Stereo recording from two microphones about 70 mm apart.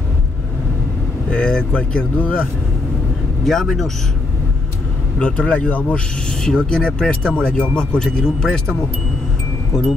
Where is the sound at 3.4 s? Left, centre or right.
Centre.